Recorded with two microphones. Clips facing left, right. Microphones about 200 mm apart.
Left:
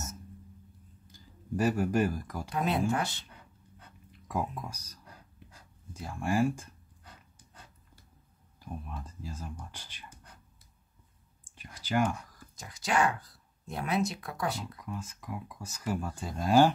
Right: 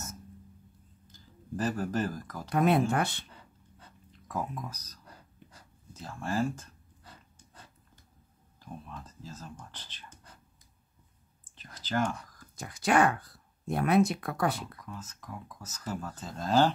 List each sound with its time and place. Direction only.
1.6 s speech: 15° left (ahead or behind)
2.5 s speech: 55° right (ahead or behind)
4.3 s speech: 10° left (ahead or behind)
5.9 s speech: 10° left (ahead or behind)
8.5 s speech: 15° left (ahead or behind)
11.5 s whispering: 10° left (ahead or behind)
12.5 s speech: 55° right (ahead or behind)
14.8 s speech: 15° left (ahead or behind)